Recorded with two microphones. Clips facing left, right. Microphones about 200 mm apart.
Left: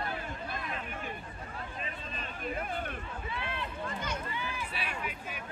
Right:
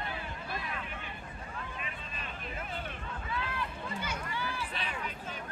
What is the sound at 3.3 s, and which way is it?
Run, 25° left (ahead or behind).